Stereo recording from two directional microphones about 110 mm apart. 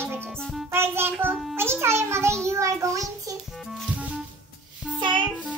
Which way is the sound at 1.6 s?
25° right (ahead or behind).